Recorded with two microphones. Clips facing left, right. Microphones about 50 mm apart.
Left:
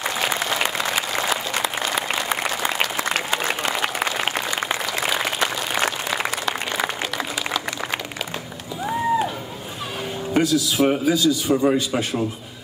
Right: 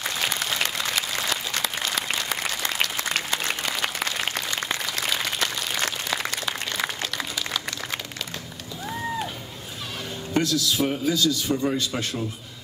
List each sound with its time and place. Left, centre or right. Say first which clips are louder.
0.0 s applause: left 4 dB; left
10.3 s a man's voice: left 4 dB; centre